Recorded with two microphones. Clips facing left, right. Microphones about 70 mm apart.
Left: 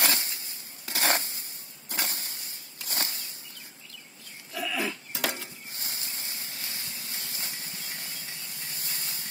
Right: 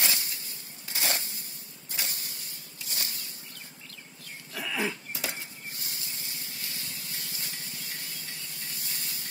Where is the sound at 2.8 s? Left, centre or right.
Left.